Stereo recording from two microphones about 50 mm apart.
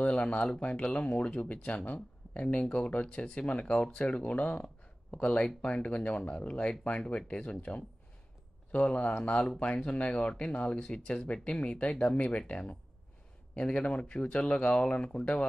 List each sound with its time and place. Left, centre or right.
0.0 s speech: left